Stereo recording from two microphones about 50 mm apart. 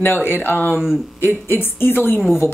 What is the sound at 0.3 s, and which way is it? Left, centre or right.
Speech, left.